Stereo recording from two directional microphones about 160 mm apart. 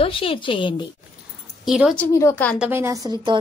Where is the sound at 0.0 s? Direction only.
35° left (ahead or behind).